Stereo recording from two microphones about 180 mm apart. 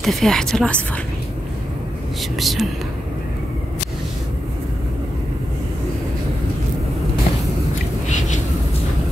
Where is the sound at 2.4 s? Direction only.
Centre (ahead or behind).